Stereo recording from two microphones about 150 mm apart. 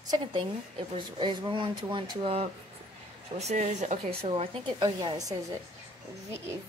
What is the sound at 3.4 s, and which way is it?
Speech, 50° right (ahead or behind).